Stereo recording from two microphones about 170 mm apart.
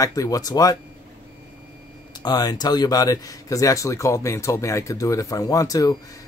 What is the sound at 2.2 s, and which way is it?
Speech, 25° left (ahead or behind).